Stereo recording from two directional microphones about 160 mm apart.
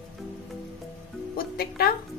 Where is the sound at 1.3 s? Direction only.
70° left (ahead or behind).